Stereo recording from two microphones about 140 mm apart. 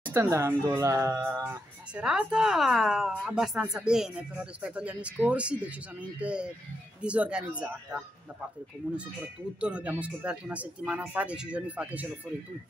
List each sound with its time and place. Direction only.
0.1 s a woman's voice: 20° right (ahead or behind)